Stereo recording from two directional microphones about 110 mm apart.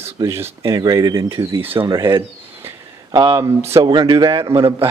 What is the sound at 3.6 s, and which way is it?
Speech, 25° right (ahead or behind).